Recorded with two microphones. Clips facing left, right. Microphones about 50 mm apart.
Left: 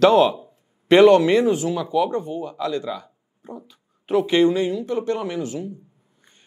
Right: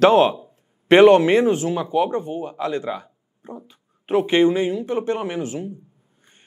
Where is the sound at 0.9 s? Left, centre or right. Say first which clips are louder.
Right 1 dB; right.